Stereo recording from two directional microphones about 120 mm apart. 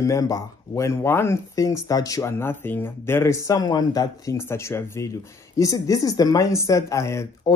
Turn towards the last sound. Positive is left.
turn(degrees=25)  # may be behind; listen again after turning